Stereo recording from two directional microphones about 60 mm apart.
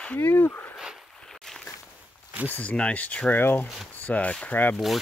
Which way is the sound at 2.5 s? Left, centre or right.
Left.